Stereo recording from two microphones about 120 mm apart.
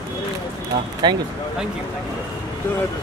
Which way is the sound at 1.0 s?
35° right (ahead or behind).